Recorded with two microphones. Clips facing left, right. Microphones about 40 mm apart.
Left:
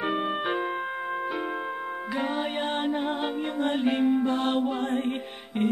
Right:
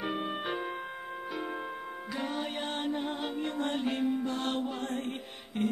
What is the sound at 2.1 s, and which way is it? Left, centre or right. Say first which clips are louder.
Music: left 6 dB; left.